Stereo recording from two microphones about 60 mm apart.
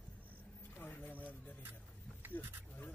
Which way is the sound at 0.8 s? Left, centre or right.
Left.